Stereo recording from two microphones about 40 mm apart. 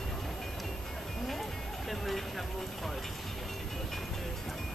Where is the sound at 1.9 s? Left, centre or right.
Centre.